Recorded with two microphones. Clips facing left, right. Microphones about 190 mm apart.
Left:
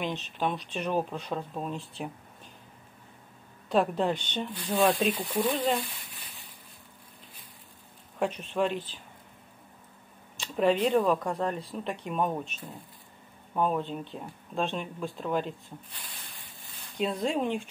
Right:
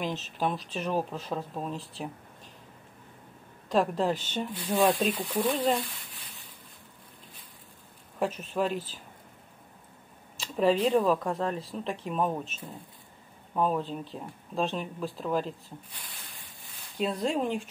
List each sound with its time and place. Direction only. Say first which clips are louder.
0.0 s speech: even; 5° right (ahead or behind)
3.7 s speech: even; centre (ahead or behind)
8.2 s speech: left 1 dB; 5° right (ahead or behind)
10.3 s a sound: even; centre (ahead or behind)
10.9 s speech: even; centre (ahead or behind)
16.9 s speech: even; centre (ahead or behind)